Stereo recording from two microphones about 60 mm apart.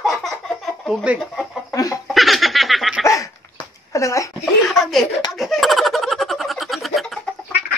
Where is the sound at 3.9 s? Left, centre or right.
Left.